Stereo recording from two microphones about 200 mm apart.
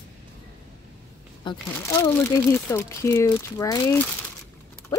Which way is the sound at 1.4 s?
20° left (ahead or behind).